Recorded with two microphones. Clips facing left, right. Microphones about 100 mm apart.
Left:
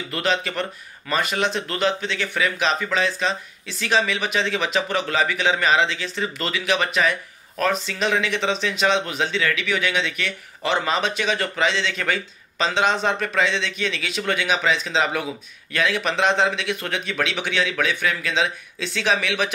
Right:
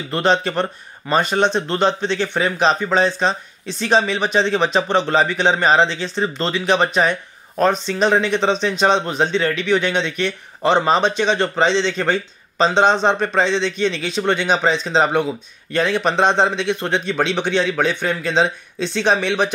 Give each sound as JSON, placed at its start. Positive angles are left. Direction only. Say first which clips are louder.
{"t": 0.1, "sound": "speech", "louder": "right 7 dB", "side_deg": -35}